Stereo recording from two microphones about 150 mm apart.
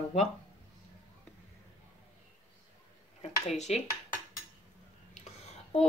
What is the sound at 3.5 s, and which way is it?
Speech, 45° left (ahead or behind).